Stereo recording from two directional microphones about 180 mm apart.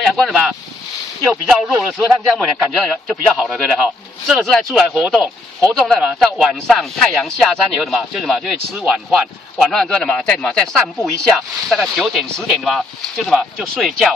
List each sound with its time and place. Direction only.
1.5 s speech: centre (ahead or behind)